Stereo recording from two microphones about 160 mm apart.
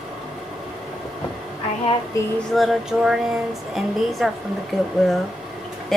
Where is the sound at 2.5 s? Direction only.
Centre (ahead or behind).